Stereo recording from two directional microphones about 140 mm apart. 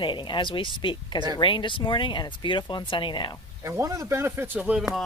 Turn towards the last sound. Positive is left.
turn(degrees=-10)  # may be behind; listen again after turning